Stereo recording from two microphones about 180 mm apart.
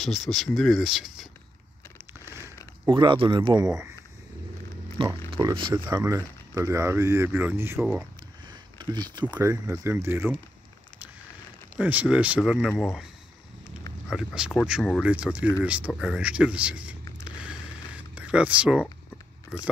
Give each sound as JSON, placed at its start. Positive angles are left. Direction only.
{"t": 0.0, "sound": "speech", "side_deg": 0}
{"t": 2.9, "sound": "speech", "side_deg": -25}
{"t": 4.9, "sound": "speech", "side_deg": -30}
{"t": 8.5, "sound": "a sound", "side_deg": -25}
{"t": 9.4, "sound": "speech", "side_deg": -15}
{"t": 11.8, "sound": "speech", "side_deg": -10}
{"t": 14.0, "sound": "speech", "side_deg": -5}
{"t": 18.1, "sound": "speech", "side_deg": -5}